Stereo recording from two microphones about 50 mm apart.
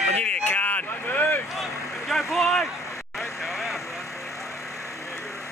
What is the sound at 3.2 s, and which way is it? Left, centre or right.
Vehicle, centre.